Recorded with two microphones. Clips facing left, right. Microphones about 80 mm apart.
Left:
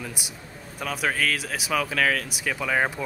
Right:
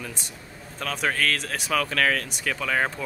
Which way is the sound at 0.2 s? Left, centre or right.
Centre.